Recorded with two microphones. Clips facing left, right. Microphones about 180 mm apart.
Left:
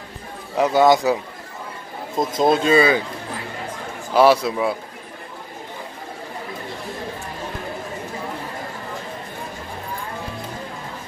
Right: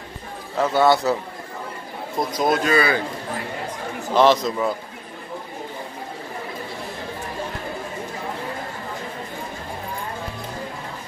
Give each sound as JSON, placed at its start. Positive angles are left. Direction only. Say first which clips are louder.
{"t": 0.6, "sound": "speech", "louder": "left 2 dB", "side_deg": 15}
{"t": 2.1, "sound": "speech", "louder": "left 3 dB", "side_deg": 25}
{"t": 4.1, "sound": "speech", "louder": "left 2 dB", "side_deg": 10}